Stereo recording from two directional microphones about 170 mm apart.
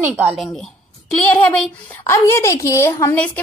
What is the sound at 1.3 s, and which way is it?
A woman's voice, 10° left (ahead or behind).